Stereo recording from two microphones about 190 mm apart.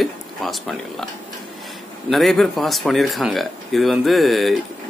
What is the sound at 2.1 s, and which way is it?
Speech, centre (ahead or behind).